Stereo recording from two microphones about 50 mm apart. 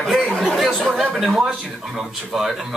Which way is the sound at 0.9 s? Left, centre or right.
Centre.